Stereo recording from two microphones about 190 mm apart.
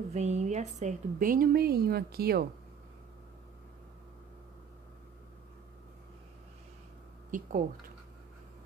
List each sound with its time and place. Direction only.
0.1 s a woman's voice: 35° right (ahead or behind); by 2.4 s 55° right (ahead or behind)
7.2 s a woman's voice: 45° right (ahead or behind)